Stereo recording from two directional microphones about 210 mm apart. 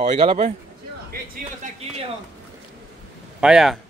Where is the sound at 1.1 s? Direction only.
40° right (ahead or behind).